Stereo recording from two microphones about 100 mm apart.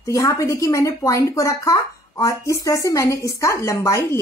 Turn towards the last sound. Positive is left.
turn(degrees=30)  # may be behind; listen again after turning